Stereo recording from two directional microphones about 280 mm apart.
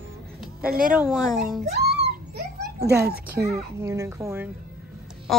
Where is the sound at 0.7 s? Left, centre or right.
Right.